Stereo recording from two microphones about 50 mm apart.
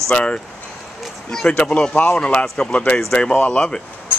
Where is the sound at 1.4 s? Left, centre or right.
Left.